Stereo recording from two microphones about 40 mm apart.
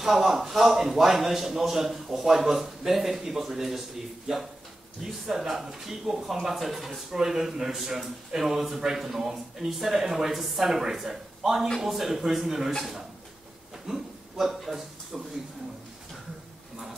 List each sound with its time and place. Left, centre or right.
0.0 s speech: centre
5.3 s speech: centre
13.8 s a man's voice: centre